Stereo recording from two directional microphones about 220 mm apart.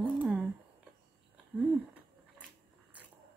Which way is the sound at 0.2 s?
5° right (ahead or behind).